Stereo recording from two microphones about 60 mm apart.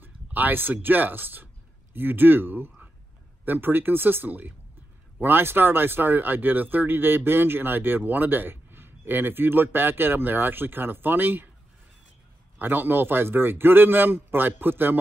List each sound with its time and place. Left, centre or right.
0.0 s speech: right
12.5 s speech: right